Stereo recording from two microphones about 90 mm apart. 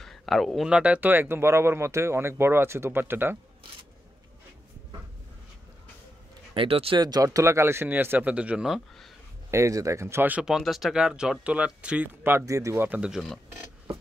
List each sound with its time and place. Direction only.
0.0 s a sound: 5° left (ahead or behind)
0.7 s speech: 10° right (ahead or behind)
6.5 s speech: 80° right
7.0 s speech: 45° right (ahead or behind); by 8.6 s 15° right (ahead or behind)
8.6 s speech: centre (ahead or behind)
9.5 s speech: 35° right (ahead or behind)
10.4 s speech: 5° right (ahead or behind)
12.2 s speech: 25° right (ahead or behind)
12.8 s speech: 15° right (ahead or behind)
13.1 s speech: centre (ahead or behind)